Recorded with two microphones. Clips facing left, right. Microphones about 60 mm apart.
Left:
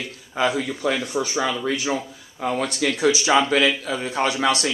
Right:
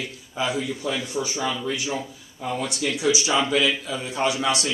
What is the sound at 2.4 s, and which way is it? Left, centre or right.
Speech, left.